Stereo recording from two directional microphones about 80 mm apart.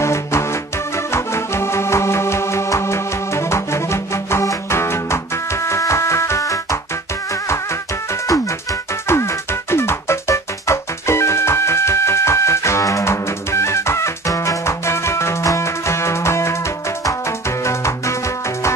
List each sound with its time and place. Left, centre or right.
0.0 s music: left
8.1 s music: left